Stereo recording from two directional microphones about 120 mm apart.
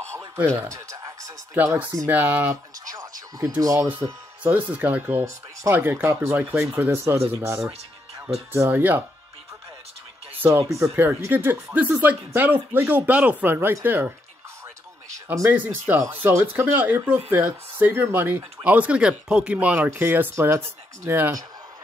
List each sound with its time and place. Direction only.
0.6 s speech: 25° right (ahead or behind)
2.8 s a sound: 30° right (ahead or behind)
4.0 s speech: 20° right (ahead or behind)
10.7 s speech: 20° right (ahead or behind)
15.2 s speech: 20° right (ahead or behind)